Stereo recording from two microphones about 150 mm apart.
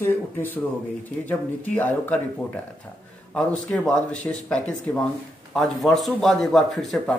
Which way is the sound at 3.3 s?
5° left (ahead or behind).